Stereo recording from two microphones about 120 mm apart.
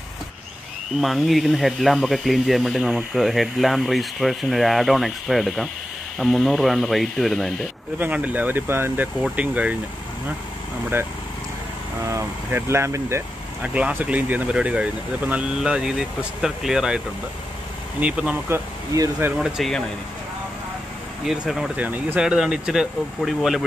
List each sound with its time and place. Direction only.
1.0 s speech: centre (ahead or behind)
8.0 s speech: 10° right (ahead or behind)
12.1 s speech: 20° right (ahead or behind)
13.6 s speech: 10° right (ahead or behind)
18.0 s speech: 10° right (ahead or behind)
19.3 s speech: 5° right (ahead or behind)
21.3 s speech: 5° right (ahead or behind)